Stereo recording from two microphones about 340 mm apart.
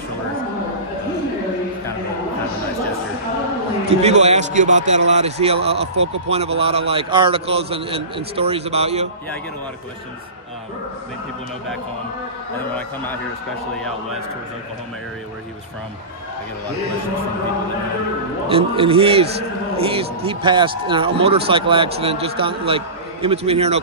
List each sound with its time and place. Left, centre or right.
3.9 s a man's voice: centre
18.5 s speech: centre